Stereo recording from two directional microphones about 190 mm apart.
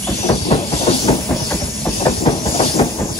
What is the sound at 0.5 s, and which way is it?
Train, 35° left (ahead or behind).